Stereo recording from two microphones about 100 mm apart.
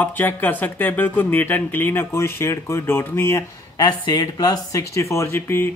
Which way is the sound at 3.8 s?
45° left (ahead or behind).